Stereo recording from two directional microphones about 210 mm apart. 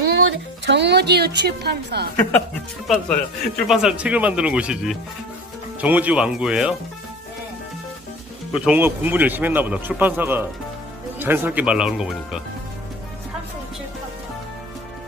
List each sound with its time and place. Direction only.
0.2 s a woman's voice: 55° right (ahead or behind)
2.9 s speech: centre (ahead or behind)
8.5 s a man's voice: 5° right (ahead or behind)